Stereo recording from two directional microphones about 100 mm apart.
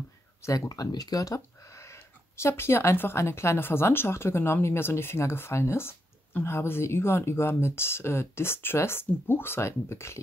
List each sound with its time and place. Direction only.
0.4 s speech: 35° left (ahead or behind)